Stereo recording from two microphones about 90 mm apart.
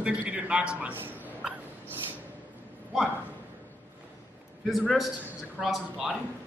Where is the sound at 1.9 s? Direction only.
20° right (ahead or behind).